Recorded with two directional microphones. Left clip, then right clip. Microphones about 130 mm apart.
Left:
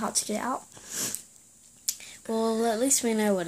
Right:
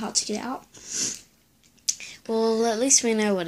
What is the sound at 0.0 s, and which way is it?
Speech, 55° left (ahead or behind).